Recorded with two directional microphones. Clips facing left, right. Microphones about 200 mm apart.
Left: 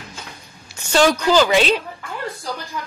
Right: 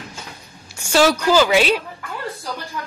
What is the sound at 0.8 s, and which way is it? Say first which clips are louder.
Speech: even; 10° right (ahead or behind).